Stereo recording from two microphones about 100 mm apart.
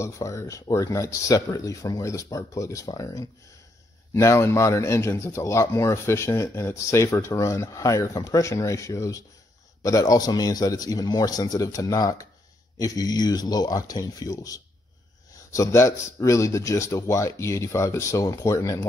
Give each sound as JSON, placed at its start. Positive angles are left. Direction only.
{"t": 0.0, "sound": "a man's voice", "side_deg": 30}